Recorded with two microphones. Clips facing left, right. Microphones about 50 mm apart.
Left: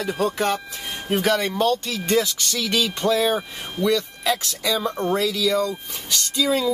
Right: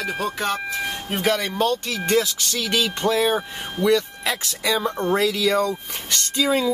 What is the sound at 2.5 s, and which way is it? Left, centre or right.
Speech, centre.